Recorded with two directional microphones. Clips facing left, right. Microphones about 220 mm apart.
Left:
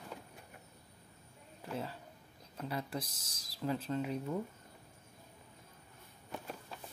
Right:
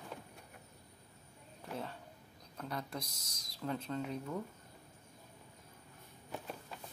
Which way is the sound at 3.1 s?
30° left (ahead or behind).